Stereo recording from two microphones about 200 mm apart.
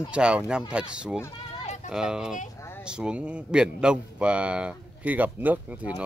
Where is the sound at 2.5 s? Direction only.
10° left (ahead or behind).